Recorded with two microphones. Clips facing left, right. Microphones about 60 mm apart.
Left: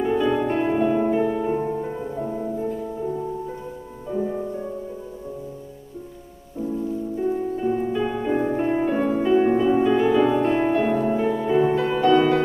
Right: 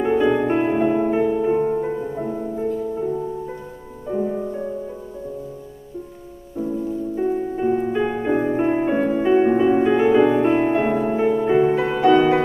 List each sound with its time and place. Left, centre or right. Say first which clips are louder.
0.0 s music: right 3 dB; right
4.2 s music: right 2 dB; centre
7.2 s music: right 2 dB; right